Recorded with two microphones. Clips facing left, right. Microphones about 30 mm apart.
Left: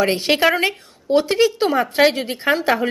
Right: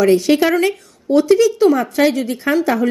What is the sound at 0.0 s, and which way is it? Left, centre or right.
A woman's voice, left.